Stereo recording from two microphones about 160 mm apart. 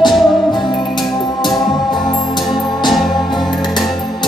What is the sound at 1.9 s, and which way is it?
Music, 25° left (ahead or behind).